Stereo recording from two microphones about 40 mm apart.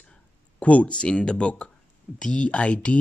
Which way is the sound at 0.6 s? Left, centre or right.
Left.